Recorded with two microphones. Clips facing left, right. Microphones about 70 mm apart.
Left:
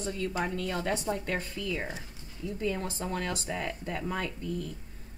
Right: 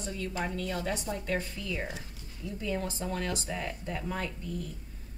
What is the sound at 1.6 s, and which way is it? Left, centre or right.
Speech, left.